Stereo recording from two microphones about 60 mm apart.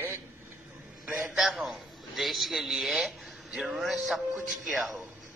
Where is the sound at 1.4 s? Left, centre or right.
Centre.